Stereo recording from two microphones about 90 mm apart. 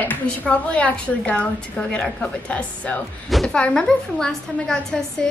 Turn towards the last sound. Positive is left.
turn(degrees=5)  # may be behind; listen again after turning